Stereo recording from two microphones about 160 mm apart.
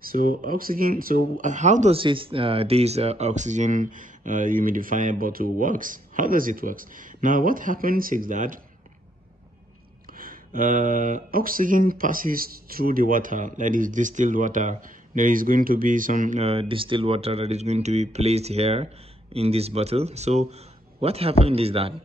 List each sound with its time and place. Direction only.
0.1 s speech: 65° right (ahead or behind); by 2.0 s 45° right (ahead or behind)
2.0 s speech: 35° right (ahead or behind); by 8.5 s 55° right (ahead or behind)
10.1 s speech: 60° right (ahead or behind)
16.4 s speech: 35° right (ahead or behind)